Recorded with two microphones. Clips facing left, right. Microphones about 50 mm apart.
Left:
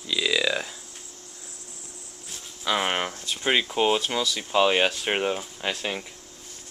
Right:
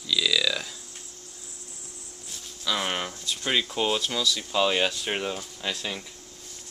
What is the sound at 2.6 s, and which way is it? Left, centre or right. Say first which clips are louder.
Speech: left 3 dB; left.